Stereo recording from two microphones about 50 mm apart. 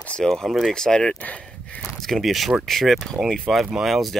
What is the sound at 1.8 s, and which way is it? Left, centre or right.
Speech, centre.